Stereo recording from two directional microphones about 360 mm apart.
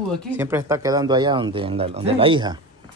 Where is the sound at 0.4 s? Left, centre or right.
Centre.